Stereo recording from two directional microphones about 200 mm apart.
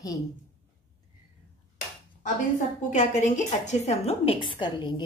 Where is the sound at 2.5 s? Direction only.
35° left (ahead or behind).